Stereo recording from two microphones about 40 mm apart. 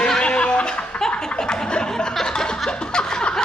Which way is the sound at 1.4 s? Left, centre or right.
Centre.